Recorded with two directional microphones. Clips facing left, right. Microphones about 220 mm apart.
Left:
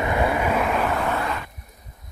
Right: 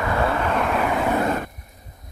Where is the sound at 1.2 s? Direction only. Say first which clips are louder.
Right 6 dB; 45° right (ahead or behind).